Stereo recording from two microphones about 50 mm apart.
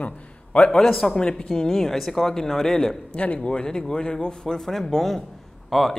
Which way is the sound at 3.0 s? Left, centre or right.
Left.